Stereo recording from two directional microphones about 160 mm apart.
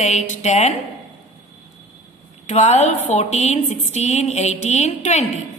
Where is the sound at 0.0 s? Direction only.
45° left (ahead or behind).